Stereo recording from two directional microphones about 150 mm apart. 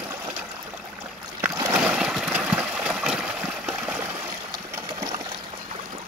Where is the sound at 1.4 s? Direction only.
15° right (ahead or behind).